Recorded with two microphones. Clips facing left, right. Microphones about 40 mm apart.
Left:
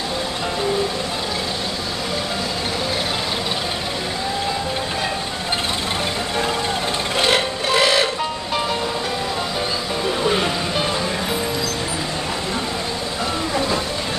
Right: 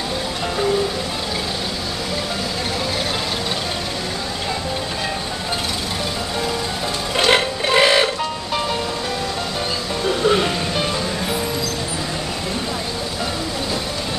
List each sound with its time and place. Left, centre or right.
7.2 s music: centre
8.2 s music: centre